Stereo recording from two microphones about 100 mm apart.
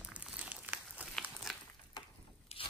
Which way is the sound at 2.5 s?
90° left.